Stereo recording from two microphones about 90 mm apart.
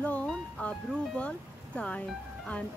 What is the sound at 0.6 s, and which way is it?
Speech, 15° left (ahead or behind).